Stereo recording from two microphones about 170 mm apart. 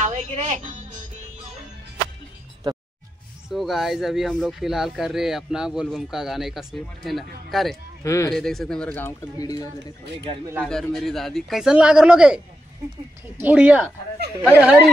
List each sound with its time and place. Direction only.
0.0 s music: 45° right (ahead or behind)
3.4 s speech: centre (ahead or behind)
8.0 s speech: 20° left (ahead or behind)
8.3 s speech: centre (ahead or behind); by 9.9 s 20° left (ahead or behind)
10.6 s speech: 5° left (ahead or behind)
13.4 s speech: 10° right (ahead or behind)